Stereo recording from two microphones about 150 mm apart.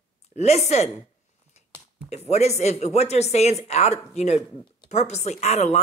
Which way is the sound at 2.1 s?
45° left (ahead or behind).